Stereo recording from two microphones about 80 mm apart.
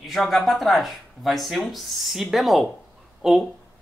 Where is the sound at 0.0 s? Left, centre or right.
Centre.